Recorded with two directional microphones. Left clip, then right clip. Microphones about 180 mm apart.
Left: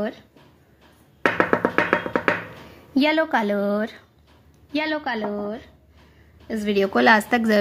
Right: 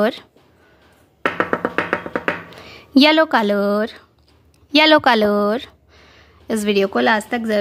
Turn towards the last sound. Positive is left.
turn(degrees=-5)  # may be behind; listen again after turning